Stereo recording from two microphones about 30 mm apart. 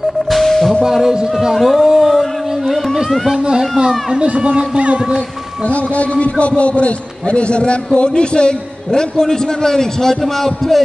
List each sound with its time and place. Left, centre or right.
0.3 s music: centre
0.8 s speech: centre
1.5 s a man's voice: centre
2.0 s a sound: centre
3.4 s speech: right
4.1 s speech: right
5.7 s a man's voice: left; by 10.1 s centre
10.2 s a man's voice: centre